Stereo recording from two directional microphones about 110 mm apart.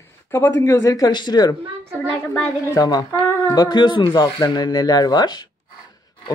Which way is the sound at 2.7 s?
35° left (ahead or behind).